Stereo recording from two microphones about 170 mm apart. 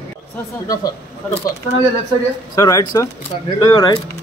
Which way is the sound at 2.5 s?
20° left (ahead or behind).